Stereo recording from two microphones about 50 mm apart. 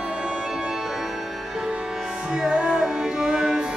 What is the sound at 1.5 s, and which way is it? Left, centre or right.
Music, centre.